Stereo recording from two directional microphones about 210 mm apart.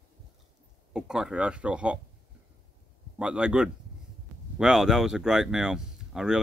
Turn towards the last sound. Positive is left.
turn(degrees=-5)  # may be behind; listen again after turning